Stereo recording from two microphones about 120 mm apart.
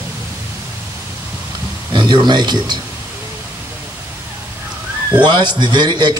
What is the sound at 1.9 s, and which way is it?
Speech, 40° right (ahead or behind).